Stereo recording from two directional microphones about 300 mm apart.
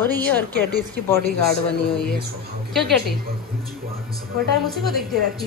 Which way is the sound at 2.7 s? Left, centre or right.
Centre.